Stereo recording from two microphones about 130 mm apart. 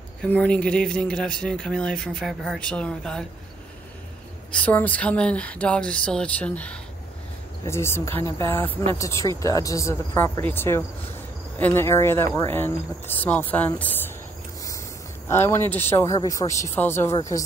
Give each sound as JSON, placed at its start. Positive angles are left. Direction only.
{"t": 0.2, "sound": "speech", "side_deg": 10}
{"t": 4.5, "sound": "speech", "side_deg": 10}
{"t": 7.6, "sound": "speech", "side_deg": 20}
{"t": 15.2, "sound": "speech", "side_deg": 20}